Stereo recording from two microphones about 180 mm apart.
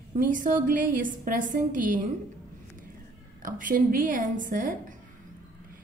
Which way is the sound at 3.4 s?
50° right (ahead or behind).